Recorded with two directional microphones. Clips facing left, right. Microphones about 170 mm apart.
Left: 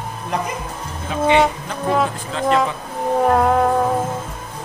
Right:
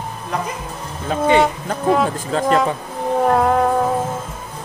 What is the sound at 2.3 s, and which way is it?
Speech, 40° right (ahead or behind).